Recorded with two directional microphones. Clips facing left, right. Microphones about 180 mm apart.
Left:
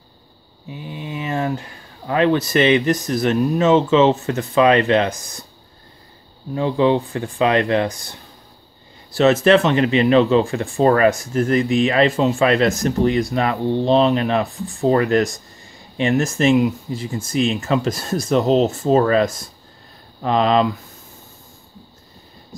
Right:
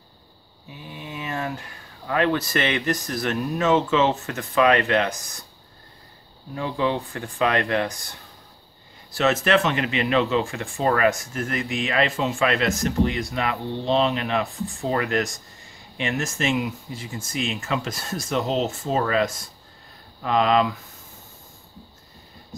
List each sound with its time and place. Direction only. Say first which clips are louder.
0.7 s a sound: left 7 dB; 25° left (ahead or behind)
2.0 s speech: left 5 dB; 25° left (ahead or behind)
6.5 s speech: left 8 dB; 25° left (ahead or behind)
9.1 s speech: left 7 dB; 30° left (ahead or behind)